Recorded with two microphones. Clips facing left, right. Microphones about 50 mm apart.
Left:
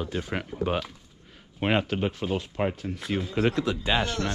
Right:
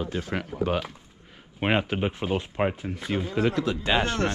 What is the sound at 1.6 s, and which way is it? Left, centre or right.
Speech, centre.